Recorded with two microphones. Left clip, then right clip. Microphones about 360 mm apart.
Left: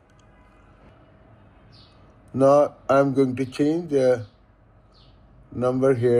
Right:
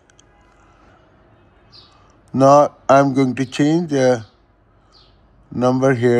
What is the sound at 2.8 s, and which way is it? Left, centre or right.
Speech, right.